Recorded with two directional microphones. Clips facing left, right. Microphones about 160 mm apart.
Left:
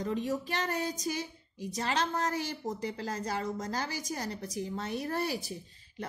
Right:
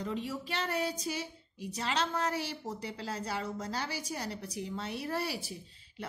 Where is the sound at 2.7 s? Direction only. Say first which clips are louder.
Left 3 dB; 45° left (ahead or behind).